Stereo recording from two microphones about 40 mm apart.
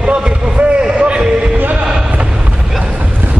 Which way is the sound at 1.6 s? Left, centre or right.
Right.